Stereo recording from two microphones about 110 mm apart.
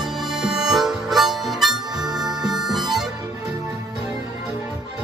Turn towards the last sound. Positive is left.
turn(degrees=0)  # may be behind; listen again after turning